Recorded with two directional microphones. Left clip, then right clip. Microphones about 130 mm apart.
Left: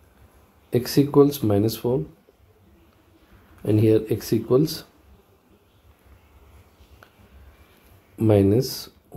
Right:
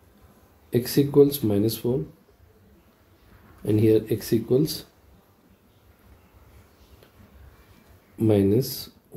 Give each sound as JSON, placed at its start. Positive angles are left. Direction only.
{"t": 0.7, "sound": "speech", "side_deg": 50}
{"t": 3.6, "sound": "speech", "side_deg": 45}
{"t": 8.2, "sound": "speech", "side_deg": 45}